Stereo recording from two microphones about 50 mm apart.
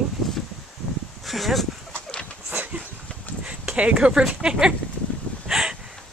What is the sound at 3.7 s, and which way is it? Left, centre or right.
Speech, right.